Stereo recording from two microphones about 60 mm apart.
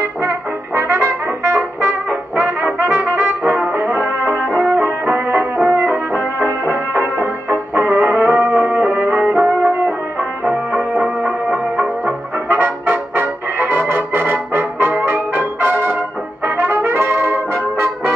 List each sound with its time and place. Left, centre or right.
0.0 s brass instrument: right
6.4 s music: right
16.4 s brass instrument: right